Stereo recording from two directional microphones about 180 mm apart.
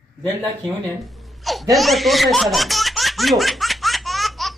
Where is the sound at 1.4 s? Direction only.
Centre (ahead or behind).